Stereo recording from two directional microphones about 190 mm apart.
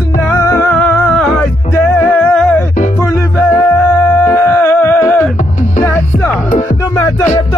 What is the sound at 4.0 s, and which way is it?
Humming, 10° left (ahead or behind).